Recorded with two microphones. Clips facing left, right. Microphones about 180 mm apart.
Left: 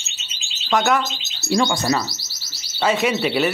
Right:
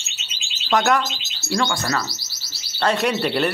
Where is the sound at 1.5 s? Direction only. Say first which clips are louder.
Left 4 dB; 15° left (ahead or behind).